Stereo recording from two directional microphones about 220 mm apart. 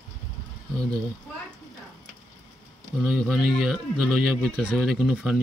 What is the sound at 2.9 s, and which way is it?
Speech, centre (ahead or behind).